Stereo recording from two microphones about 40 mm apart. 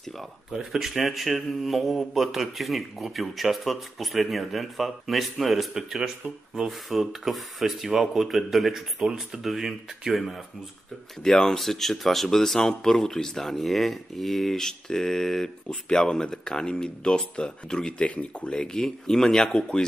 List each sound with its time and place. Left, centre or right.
0.5 s speech: centre
11.2 s speech: centre
17.9 s speech: left
18.5 s speech: centre